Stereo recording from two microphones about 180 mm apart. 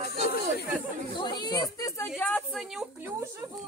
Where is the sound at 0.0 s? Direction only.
60° left (ahead or behind).